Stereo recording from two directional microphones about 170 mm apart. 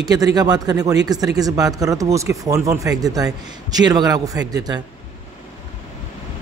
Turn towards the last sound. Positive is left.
turn(degrees=-20)  # may be behind; listen again after turning